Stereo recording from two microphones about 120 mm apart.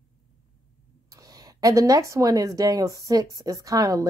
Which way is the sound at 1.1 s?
30° right (ahead or behind).